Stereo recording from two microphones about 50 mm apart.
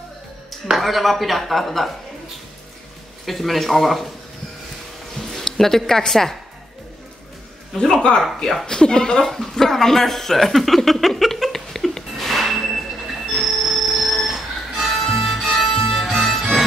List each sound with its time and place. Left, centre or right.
0.7 s speech: centre
3.3 s speech: centre
5.3 s a woman's voice: centre
7.7 s speech: centre
13.3 s a sound: centre
14.8 s music: centre